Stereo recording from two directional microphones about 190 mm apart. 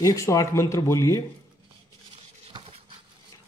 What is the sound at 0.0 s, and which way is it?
Speech, 15° left (ahead or behind).